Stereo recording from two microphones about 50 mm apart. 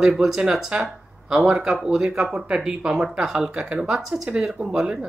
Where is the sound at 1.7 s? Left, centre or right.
Centre.